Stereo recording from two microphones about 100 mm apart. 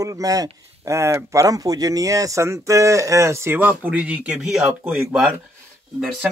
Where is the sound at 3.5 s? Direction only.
15° right (ahead or behind).